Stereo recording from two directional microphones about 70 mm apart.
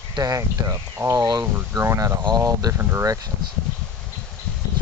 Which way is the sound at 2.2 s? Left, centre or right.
Right.